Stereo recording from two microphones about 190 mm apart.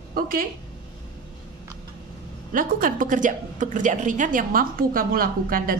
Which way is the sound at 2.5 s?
45° right (ahead or behind).